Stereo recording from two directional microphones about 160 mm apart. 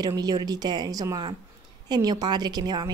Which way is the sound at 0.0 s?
25° right (ahead or behind).